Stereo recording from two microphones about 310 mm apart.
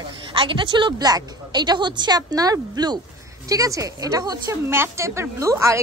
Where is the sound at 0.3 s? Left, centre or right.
Centre.